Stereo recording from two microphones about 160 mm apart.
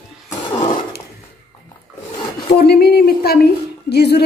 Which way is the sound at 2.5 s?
75° left (ahead or behind).